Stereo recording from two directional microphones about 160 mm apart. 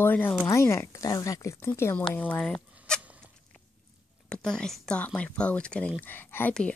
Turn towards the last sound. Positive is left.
turn(degrees=10)  # may be behind; listen again after turning